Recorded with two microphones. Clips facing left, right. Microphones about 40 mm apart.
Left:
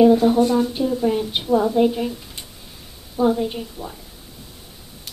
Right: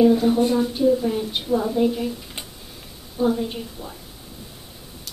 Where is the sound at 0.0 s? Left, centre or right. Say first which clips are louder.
Left 3 dB; centre.